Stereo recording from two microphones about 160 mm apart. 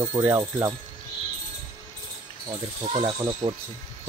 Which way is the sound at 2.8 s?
30° right (ahead or behind).